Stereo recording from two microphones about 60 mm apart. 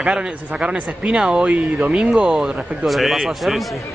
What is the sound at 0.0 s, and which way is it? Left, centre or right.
A man's voice, centre.